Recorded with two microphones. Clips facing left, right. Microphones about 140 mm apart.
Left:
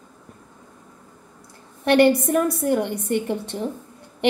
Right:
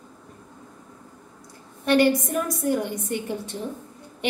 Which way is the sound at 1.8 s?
60° left (ahead or behind).